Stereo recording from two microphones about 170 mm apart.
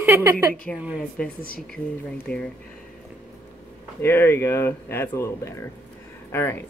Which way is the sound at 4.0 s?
10° left (ahead or behind).